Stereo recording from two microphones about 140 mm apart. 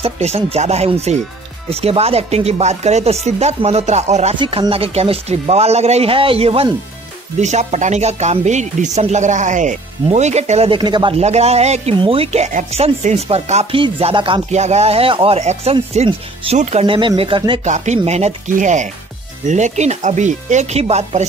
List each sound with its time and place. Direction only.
0.0 s speech: 50° right (ahead or behind)
4.4 s speech: 40° right (ahead or behind)
7.3 s speech: 55° right (ahead or behind)
10.7 s speech: 30° right (ahead or behind)
11.1 s speech: 50° right (ahead or behind)
14.5 s speech: 55° right (ahead or behind)
16.9 s speech: 35° right (ahead or behind)
17.6 s speech: 55° right (ahead or behind)